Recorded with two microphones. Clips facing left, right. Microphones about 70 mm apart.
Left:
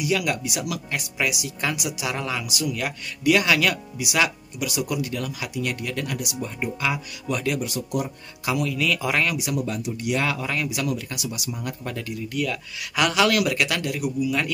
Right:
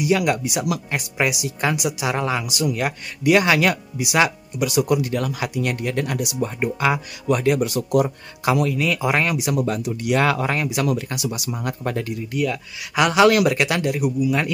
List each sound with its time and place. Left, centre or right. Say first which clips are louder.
0.0 s speech: right 5 dB; right
7.2 s a man's voice: right 7 dB; right
8.7 s speech: right 3 dB; right
9.5 s speech: right 5 dB; right
10.4 s speech: right 5 dB; right
12.3 s speech: right 2 dB; centre